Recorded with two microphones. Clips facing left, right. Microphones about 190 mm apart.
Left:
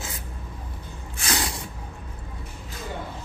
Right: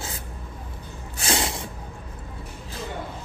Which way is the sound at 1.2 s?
25° right (ahead or behind).